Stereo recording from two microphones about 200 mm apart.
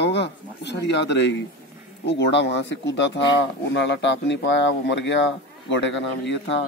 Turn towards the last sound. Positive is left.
turn(degrees=60)  # may be behind; listen again after turning